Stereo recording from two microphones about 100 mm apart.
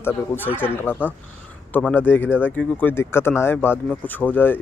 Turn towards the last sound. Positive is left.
turn(degrees=20)  # may be behind; listen again after turning